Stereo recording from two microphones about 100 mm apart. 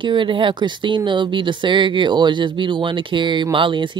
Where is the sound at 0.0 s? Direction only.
55° right (ahead or behind).